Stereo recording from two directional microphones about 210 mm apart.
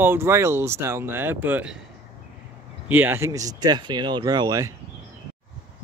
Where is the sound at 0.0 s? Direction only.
10° right (ahead or behind).